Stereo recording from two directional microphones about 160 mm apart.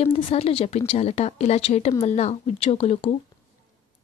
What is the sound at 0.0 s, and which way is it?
A woman's voice, 40° left (ahead or behind).